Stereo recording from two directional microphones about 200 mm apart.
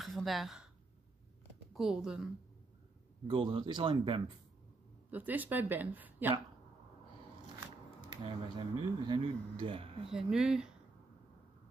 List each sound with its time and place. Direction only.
0.0 s speech: centre (ahead or behind)
1.7 s a woman's voice: centre (ahead or behind)
3.3 s speech: 25° right (ahead or behind)
5.1 s speech: 10° right (ahead or behind)
8.1 s speech: 25° right (ahead or behind)
10.1 s speech: 5° right (ahead or behind)